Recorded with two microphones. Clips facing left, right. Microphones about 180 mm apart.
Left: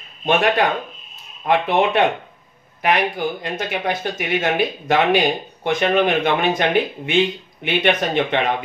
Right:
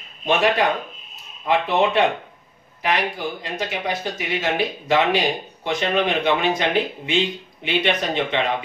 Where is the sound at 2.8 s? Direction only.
60° left (ahead or behind).